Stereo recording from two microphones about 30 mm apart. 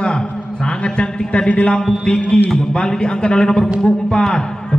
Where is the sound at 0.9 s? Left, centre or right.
Left.